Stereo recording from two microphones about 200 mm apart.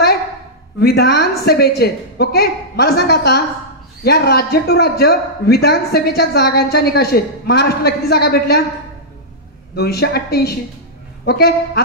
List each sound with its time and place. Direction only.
0.7 s a man's voice: 55° left (ahead or behind)
9.8 s a man's voice: 55° left (ahead or behind)